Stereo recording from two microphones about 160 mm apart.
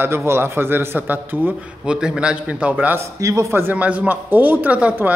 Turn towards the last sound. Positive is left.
turn(degrees=-10)  # may be behind; listen again after turning